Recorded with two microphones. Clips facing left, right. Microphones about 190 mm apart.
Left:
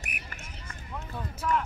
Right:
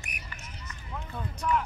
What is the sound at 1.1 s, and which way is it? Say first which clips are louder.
Music: even; 5° left (ahead or behind).